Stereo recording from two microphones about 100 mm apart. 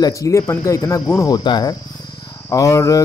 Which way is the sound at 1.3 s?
45° left (ahead or behind).